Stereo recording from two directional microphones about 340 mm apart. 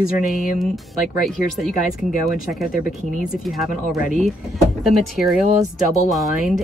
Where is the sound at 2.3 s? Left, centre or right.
Centre.